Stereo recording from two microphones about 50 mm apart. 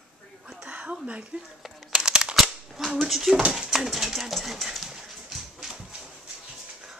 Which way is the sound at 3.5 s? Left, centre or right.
Centre.